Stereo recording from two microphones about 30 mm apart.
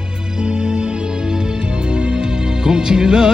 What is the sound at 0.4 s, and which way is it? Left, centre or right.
Music, right.